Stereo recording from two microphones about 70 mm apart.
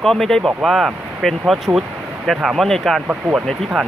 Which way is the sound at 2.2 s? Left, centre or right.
Centre.